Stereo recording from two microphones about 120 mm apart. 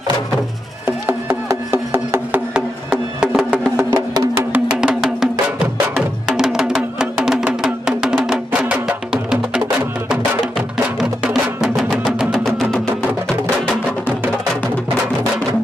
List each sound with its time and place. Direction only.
1.0 s music: 20° right (ahead or behind)
2.9 s music: 5° right (ahead or behind)
3.7 s music: 20° right (ahead or behind)
4.8 s music: 5° right (ahead or behind)
11.0 s music: 5° right (ahead or behind)